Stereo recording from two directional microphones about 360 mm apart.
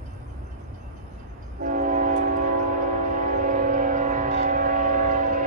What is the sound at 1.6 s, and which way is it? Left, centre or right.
Train, right.